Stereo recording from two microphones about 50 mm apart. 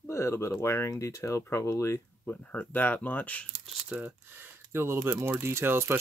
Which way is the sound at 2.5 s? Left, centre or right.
Left.